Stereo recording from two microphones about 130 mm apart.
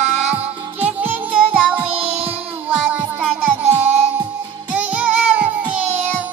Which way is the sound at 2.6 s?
10° right (ahead or behind).